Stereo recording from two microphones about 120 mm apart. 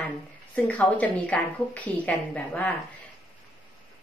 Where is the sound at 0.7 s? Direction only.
10° left (ahead or behind).